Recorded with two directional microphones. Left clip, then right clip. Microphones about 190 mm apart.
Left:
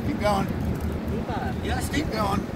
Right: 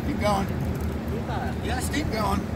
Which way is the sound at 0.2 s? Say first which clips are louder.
Left 1 dB; 40° right (ahead or behind).